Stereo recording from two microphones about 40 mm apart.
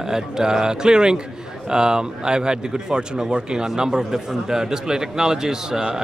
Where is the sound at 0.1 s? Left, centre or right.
Centre.